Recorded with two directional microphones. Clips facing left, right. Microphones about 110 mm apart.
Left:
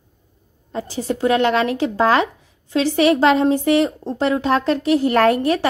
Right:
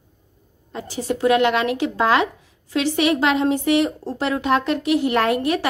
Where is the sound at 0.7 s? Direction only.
30° left (ahead or behind).